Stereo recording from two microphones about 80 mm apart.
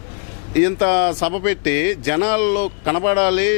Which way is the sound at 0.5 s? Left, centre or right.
Centre.